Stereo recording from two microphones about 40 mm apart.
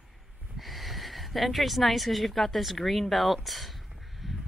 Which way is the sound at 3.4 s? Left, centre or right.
Centre.